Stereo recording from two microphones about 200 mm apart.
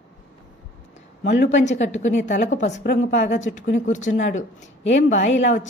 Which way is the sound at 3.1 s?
35° left (ahead or behind).